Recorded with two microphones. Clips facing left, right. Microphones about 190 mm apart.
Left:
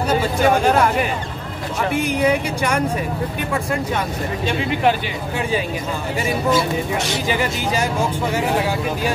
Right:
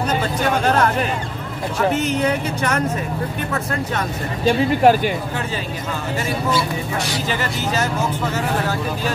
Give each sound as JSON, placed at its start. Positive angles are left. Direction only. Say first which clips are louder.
{"t": 0.1, "sound": "speech", "louder": "left 6 dB", "side_deg": 10}
{"t": 4.5, "sound": "speech", "louder": "right 5 dB", "side_deg": -40}
{"t": 7.2, "sound": "speech", "louder": "left 2 dB", "side_deg": 10}